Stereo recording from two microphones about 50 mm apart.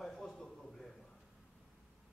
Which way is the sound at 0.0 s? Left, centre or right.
Centre.